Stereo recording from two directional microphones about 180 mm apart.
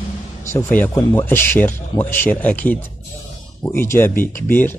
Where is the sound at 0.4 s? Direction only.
15° left (ahead or behind).